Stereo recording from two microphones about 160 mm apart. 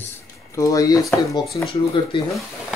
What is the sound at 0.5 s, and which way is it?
Speech, 20° left (ahead or behind).